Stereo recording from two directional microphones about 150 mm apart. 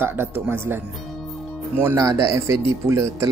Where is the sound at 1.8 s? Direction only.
20° right (ahead or behind).